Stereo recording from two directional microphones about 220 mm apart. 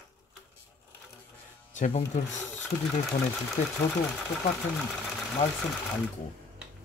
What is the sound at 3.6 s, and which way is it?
Speech, 30° left (ahead or behind).